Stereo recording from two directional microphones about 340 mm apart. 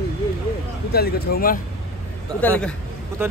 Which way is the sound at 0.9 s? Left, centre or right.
Left.